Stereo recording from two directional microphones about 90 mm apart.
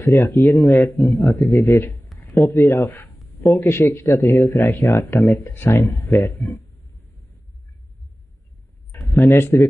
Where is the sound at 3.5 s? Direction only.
25° left (ahead or behind).